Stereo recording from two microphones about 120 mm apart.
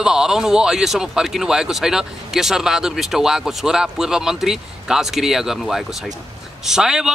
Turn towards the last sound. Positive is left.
turn(degrees=-5)  # may be behind; listen again after turning